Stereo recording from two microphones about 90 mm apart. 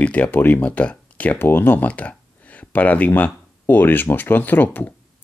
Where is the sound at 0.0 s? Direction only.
15° left (ahead or behind).